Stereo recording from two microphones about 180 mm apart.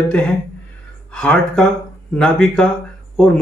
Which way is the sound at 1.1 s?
5° left (ahead or behind).